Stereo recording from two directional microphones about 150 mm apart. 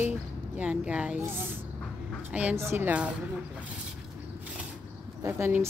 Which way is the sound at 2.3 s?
10° right (ahead or behind).